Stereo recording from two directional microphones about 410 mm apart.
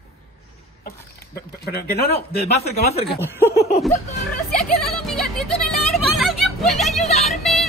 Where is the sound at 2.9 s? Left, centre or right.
Centre.